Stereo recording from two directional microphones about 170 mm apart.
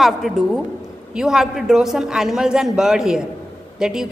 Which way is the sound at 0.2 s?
Centre (ahead or behind).